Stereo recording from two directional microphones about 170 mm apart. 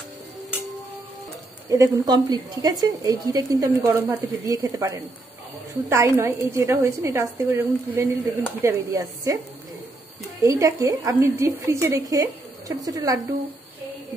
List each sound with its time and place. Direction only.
1.7 s a woman's voice: 20° right (ahead or behind)
10.4 s a woman's voice: 20° right (ahead or behind)